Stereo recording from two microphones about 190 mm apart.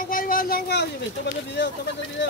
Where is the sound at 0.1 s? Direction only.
50° left (ahead or behind); by 1.7 s 65° left (ahead or behind).